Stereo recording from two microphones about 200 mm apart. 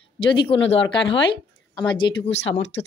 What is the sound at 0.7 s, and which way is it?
Speech, 70° left (ahead or behind).